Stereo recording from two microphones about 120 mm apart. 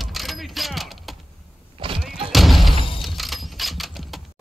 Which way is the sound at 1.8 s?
45° right (ahead or behind).